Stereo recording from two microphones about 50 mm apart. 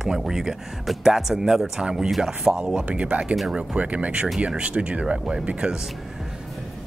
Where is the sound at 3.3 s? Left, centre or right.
Centre.